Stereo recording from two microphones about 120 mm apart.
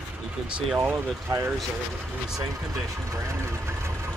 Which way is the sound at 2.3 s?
30° right (ahead or behind).